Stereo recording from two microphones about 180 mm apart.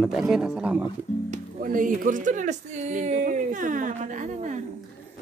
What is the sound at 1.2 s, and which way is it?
Speech, 50° right (ahead or behind).